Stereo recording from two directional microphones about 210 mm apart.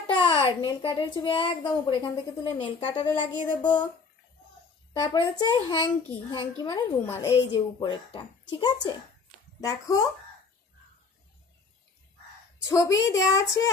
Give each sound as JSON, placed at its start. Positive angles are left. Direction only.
{"t": 0.1, "sound": "a child's voice", "side_deg": 20}
{"t": 5.0, "sound": "a child's voice", "side_deg": 20}
{"t": 12.6, "sound": "speech", "side_deg": 15}